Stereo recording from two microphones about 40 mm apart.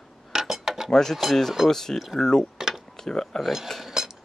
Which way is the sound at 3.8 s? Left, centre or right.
Centre.